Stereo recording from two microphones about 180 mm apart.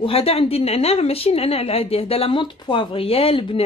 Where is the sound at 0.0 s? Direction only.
30° left (ahead or behind).